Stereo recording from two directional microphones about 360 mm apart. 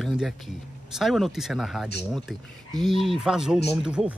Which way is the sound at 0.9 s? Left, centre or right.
Centre.